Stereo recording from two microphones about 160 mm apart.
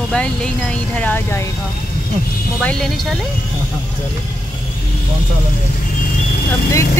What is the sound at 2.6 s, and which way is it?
Speech, 5° left (ahead or behind).